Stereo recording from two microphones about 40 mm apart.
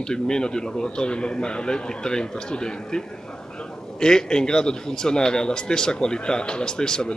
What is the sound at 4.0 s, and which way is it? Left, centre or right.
Speech, centre.